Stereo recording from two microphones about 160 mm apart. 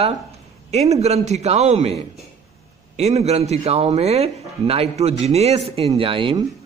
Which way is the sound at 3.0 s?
40° right (ahead or behind).